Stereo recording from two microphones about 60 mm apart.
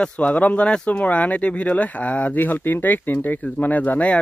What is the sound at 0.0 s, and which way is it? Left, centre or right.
Speech, left.